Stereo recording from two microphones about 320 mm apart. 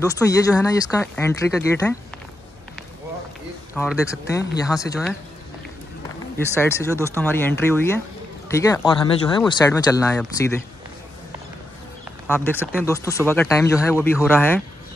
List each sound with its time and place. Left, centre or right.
0.0 s speech: centre
3.7 s speech: centre
4.0 s speech: centre
6.3 s speech: centre
12.3 s speech: centre